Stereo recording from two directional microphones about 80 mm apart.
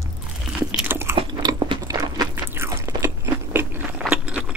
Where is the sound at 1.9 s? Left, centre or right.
Right.